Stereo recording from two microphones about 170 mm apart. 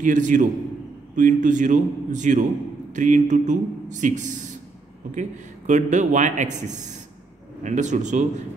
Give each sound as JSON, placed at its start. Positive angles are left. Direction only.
{"t": 0.0, "sound": "a man's voice", "side_deg": -50}